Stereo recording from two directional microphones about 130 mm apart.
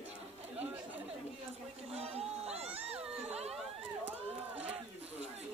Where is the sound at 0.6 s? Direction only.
15° right (ahead or behind).